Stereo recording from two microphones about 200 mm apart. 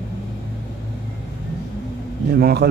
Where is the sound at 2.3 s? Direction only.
50° right (ahead or behind).